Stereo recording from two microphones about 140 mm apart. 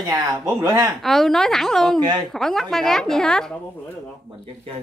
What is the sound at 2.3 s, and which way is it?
A woman's voice, 5° left (ahead or behind).